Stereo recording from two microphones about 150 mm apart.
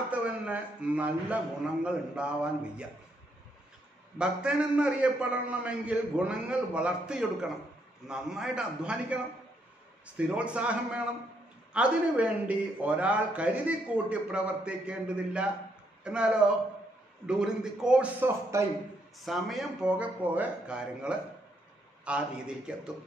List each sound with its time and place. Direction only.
0.1 s a man's voice: 10° right (ahead or behind)
4.2 s speech: 5° right (ahead or behind)
18.5 s a man's voice: 20° right (ahead or behind)
19.1 s speech: centre (ahead or behind)